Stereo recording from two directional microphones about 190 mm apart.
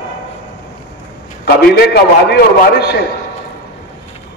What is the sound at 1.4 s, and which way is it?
A man's voice, 55° left (ahead or behind).